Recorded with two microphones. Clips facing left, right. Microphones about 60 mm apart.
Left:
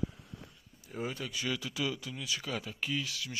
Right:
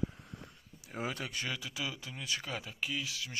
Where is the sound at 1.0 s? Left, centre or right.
Right.